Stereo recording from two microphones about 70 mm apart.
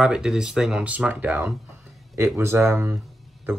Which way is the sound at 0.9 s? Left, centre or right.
Right.